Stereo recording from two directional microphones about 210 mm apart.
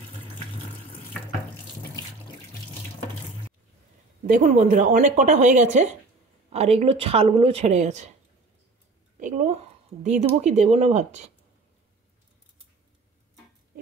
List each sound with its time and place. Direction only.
4.3 s speech: 40° right (ahead or behind)
9.2 s speech: 35° right (ahead or behind)